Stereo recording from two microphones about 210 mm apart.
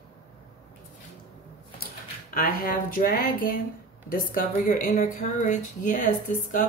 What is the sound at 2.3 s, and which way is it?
Speech, 40° left (ahead or behind).